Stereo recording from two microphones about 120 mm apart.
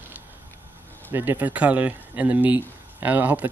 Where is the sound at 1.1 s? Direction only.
15° right (ahead or behind).